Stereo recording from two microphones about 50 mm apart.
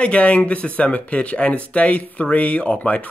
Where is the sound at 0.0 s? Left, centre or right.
Left.